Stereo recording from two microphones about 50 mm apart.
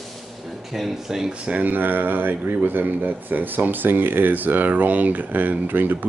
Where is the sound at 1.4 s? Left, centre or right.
Right.